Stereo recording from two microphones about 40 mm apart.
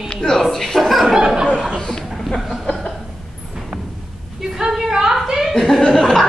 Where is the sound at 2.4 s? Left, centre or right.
Centre.